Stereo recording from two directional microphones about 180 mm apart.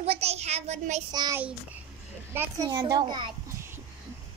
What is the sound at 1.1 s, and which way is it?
A child's voice, 25° right (ahead or behind).